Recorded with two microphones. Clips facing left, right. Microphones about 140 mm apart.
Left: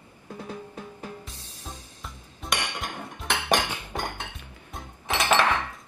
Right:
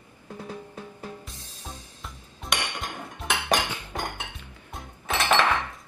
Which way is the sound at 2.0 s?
Centre (ahead or behind).